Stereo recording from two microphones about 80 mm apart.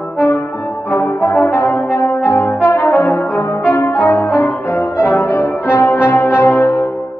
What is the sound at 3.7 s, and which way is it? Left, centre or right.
Brass instrument, left.